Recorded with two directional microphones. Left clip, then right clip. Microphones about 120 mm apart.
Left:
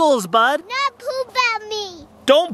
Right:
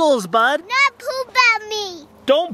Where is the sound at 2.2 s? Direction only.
35° left (ahead or behind).